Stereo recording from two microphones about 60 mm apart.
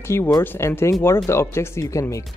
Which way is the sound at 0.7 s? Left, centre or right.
Left.